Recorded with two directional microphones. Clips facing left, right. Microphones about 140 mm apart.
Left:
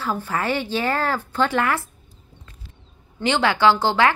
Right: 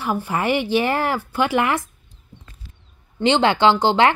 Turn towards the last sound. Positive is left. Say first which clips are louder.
# right 2 dB
turn(degrees=-20)  # may be behind; listen again after turning